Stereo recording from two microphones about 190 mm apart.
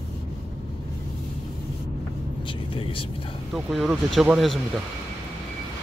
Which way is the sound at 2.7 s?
30° left (ahead or behind).